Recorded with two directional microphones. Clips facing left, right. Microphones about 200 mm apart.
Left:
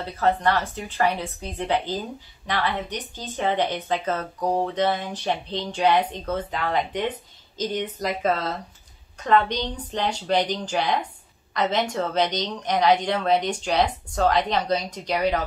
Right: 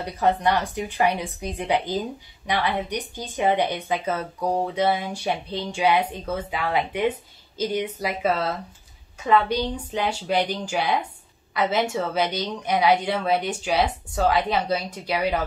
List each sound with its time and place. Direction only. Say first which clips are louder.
0.0 s speech: even; 15° right (ahead or behind)